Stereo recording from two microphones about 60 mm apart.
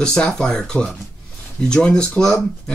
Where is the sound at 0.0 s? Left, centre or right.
Centre.